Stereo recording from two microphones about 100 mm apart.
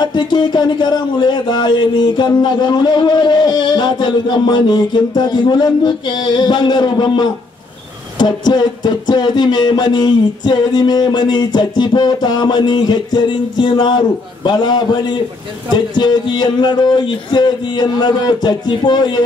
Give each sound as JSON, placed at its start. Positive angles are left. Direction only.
{"t": 0.0, "sound": "speech", "side_deg": 50}